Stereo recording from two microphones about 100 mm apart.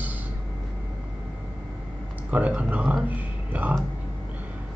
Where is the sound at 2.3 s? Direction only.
15° right (ahead or behind).